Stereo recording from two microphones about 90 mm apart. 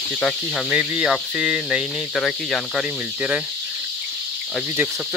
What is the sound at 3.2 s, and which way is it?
Speech, 15° right (ahead or behind).